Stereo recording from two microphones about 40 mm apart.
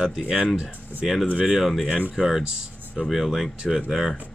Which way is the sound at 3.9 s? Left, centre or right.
Centre.